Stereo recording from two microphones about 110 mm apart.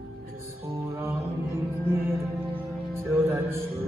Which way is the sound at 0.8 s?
20° right (ahead or behind).